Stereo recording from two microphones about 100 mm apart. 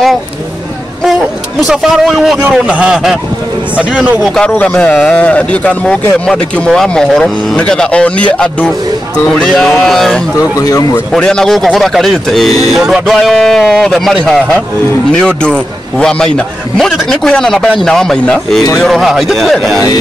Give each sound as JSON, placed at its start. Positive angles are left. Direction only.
{"t": 1.7, "sound": "a man's voice", "side_deg": 0}
{"t": 4.2, "sound": "a man's voice", "side_deg": 5}
{"t": 10.6, "sound": "speech", "side_deg": 35}
{"t": 11.1, "sound": "a man's voice", "side_deg": 5}